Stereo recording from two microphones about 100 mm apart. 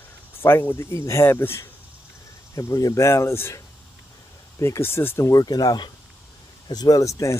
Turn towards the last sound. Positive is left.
turn(degrees=30)  # may be behind; listen again after turning